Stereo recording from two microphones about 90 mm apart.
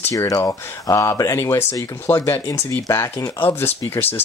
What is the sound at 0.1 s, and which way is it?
Speech, 35° left (ahead or behind).